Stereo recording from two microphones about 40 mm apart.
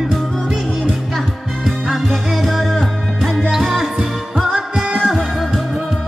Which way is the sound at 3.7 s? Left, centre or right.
Centre.